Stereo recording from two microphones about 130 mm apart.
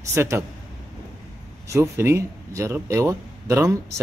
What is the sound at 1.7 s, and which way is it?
A man's voice, 20° right (ahead or behind).